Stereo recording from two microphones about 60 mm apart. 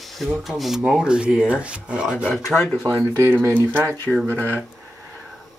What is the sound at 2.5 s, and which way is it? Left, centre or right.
Speech, centre.